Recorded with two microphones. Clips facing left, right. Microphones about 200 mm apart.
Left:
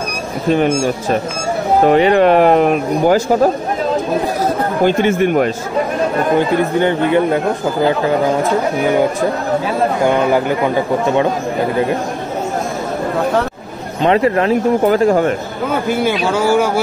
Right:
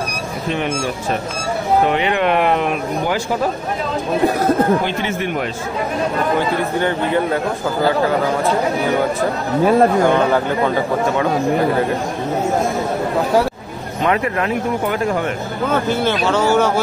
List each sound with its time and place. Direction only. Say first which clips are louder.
0.5 s speech: left 8 dB; 40° left (ahead or behind)
1.9 s speech: left 7 dB; 40° left (ahead or behind)
4.8 s speech: left 8 dB; 50° left (ahead or behind)
14.0 s speech: left 6 dB; 30° left (ahead or behind)
15.7 s speech: left 2 dB; 10° left (ahead or behind)